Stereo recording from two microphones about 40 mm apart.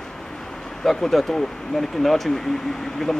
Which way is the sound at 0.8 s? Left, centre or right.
Centre.